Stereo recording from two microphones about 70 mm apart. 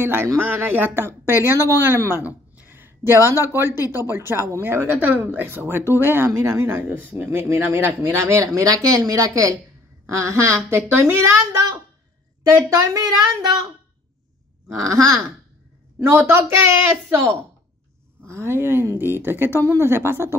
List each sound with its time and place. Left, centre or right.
0.0 s speech: right
3.8 s speech: left
4.1 s speech: right
4.8 s speech: right
8.6 s a woman's voice: right
12.6 s speech: right
14.9 s a woman's voice: right
16.0 s speech: right